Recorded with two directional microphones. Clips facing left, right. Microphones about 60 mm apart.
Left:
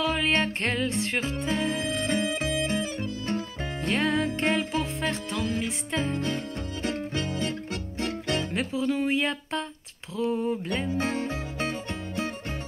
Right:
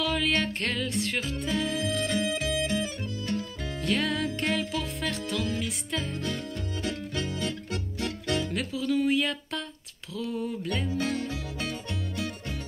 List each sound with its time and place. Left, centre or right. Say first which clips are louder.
0.0 s music: left 2 dB; left